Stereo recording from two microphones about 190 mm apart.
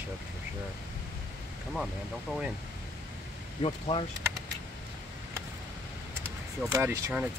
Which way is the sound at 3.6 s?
30° left (ahead or behind).